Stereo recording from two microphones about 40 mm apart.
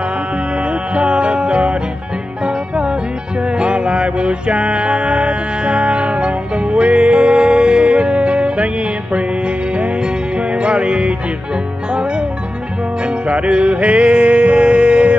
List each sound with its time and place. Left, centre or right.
0.6 s music: right